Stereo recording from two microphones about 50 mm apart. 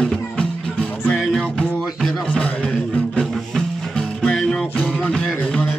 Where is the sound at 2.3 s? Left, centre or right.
Centre.